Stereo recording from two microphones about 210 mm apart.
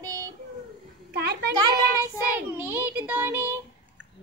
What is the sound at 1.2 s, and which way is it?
Speech, 50° right (ahead or behind).